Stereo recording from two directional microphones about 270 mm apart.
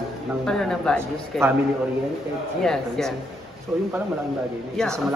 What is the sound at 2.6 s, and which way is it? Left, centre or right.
Speech, centre.